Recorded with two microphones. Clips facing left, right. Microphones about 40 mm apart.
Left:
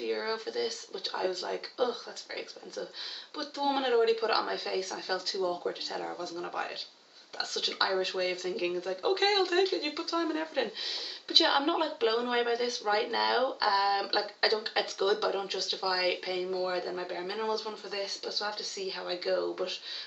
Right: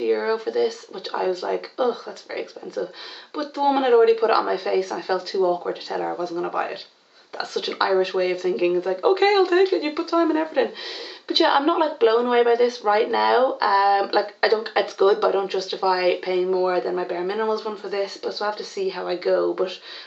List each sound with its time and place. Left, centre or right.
0.0 s speech: centre